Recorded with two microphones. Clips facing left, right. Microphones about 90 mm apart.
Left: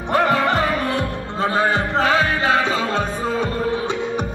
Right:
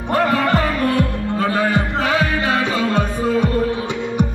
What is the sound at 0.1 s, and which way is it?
Music, 25° left (ahead or behind).